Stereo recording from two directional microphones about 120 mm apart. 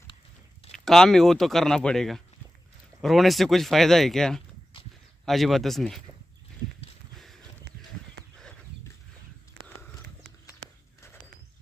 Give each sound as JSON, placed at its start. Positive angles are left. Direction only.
{"t": 0.7, "sound": "speech", "side_deg": 5}
{"t": 4.7, "sound": "walk", "side_deg": 50}
{"t": 5.2, "sound": "speech", "side_deg": 0}